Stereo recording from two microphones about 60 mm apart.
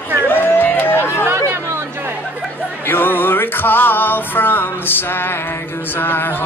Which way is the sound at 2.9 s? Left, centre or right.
Left.